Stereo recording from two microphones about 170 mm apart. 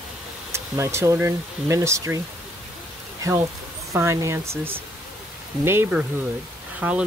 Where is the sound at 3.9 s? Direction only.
15° right (ahead or behind).